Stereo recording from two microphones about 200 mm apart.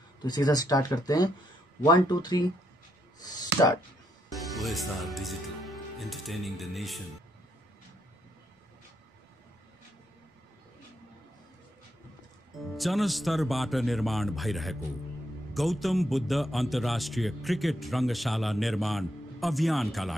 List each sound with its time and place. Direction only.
0.2 s speech: 20° left (ahead or behind)
4.3 s speech: centre (ahead or behind)
12.7 s a man's voice: centre (ahead or behind)